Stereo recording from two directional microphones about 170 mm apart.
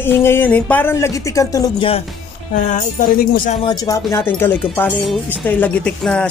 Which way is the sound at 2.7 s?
60° left (ahead or behind).